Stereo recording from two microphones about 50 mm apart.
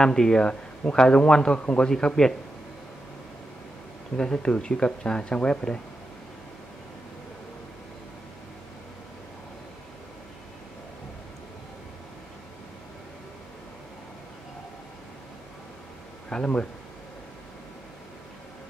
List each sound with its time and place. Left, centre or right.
0.0 s a man's voice: centre
4.2 s a man's voice: centre
16.3 s speech: centre